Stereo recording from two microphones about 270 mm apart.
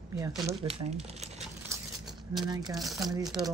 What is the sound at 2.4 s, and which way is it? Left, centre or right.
Speech, centre.